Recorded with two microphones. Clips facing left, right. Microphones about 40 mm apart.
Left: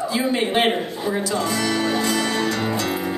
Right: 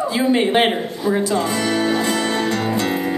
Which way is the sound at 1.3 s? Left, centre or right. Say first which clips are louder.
Right 3 dB; right.